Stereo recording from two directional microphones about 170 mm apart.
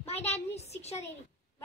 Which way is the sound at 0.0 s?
40° left (ahead or behind).